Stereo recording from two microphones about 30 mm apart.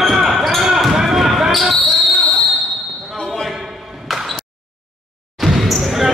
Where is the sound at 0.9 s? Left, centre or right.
Centre.